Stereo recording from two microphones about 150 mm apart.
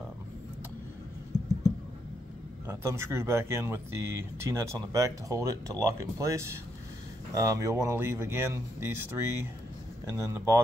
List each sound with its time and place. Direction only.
2.6 s speech: 15° right (ahead or behind)